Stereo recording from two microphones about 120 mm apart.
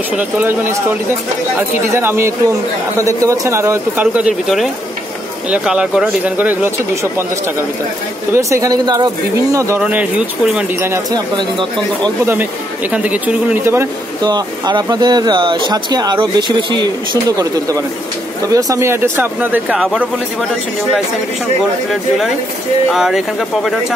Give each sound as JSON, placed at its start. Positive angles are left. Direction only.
{"t": 0.2, "sound": "speech", "side_deg": -15}
{"t": 6.3, "sound": "speech", "side_deg": -15}
{"t": 8.3, "sound": "speech", "side_deg": -25}
{"t": 9.8, "sound": "speech", "side_deg": -10}
{"t": 11.1, "sound": "speech", "side_deg": -35}
{"t": 12.9, "sound": "speech", "side_deg": -10}
{"t": 14.2, "sound": "speech", "side_deg": -35}
{"t": 22.8, "sound": "speech", "side_deg": -5}